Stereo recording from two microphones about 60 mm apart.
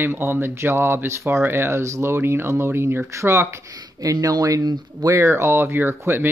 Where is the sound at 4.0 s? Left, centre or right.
Right.